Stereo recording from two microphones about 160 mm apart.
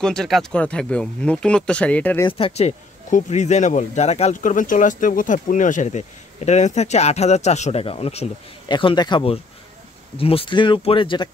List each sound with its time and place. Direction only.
0.0 s speech: 5° left (ahead or behind)
2.2 s speech: 35° left (ahead or behind)